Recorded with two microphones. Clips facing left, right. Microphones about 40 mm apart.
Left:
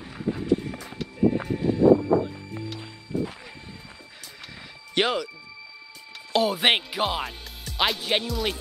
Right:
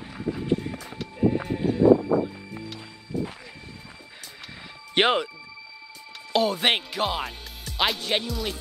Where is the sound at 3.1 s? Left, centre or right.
Left.